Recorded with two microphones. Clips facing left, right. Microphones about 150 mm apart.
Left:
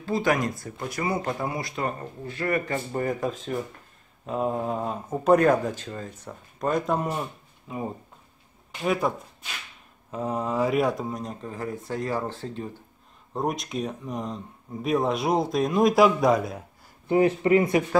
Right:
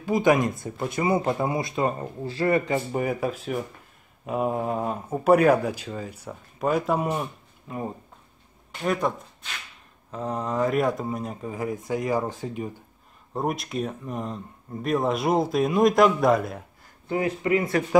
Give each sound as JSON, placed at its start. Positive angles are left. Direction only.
{"t": 0.0, "sound": "speech", "side_deg": -15}
{"t": 2.7, "sound": "speech", "side_deg": -10}
{"t": 13.3, "sound": "speech", "side_deg": 0}
{"t": 17.1, "sound": "speech", "side_deg": 25}